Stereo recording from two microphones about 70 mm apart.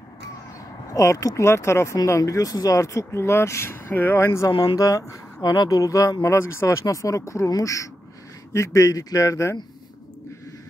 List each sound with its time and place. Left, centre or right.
0.9 s speech: left
4.5 s speech: left
6.3 s speech: left